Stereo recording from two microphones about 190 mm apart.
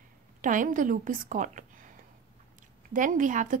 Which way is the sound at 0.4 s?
45° right (ahead or behind).